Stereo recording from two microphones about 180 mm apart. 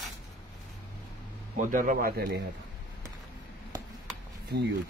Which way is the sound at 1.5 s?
45° right (ahead or behind).